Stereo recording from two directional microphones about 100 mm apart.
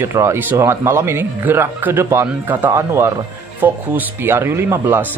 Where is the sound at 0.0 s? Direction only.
25° right (ahead or behind).